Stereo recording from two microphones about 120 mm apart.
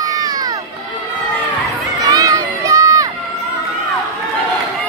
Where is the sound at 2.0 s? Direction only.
30° right (ahead or behind).